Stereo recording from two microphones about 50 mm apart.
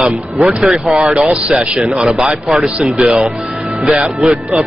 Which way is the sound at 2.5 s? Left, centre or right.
Centre.